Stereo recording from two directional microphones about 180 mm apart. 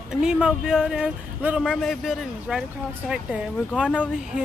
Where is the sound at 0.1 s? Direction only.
5° right (ahead or behind).